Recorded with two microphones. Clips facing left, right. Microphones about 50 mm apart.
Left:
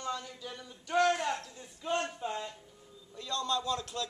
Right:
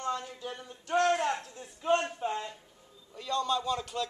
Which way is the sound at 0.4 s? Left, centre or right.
Right.